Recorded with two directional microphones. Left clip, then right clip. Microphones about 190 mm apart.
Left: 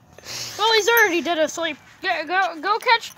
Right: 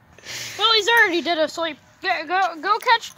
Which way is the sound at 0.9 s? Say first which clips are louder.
Even; 40° left (ahead or behind).